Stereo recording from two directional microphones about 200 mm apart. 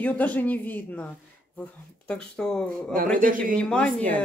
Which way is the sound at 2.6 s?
45° right (ahead or behind).